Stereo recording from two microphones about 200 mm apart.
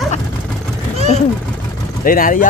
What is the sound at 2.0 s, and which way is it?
Speech, 45° left (ahead or behind).